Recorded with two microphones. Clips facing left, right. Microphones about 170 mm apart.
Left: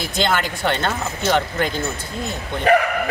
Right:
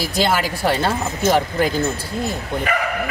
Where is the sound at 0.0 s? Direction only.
5° right (ahead or behind).